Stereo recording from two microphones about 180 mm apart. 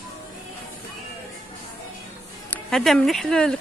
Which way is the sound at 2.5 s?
Centre (ahead or behind).